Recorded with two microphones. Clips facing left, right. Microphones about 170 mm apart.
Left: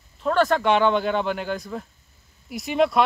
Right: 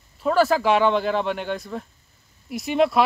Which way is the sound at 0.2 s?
5° right (ahead or behind).